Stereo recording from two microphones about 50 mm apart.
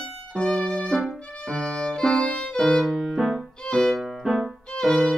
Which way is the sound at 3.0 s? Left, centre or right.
Centre.